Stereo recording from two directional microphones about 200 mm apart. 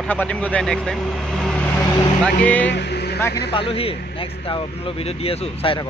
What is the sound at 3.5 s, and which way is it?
Speech, 30° left (ahead or behind).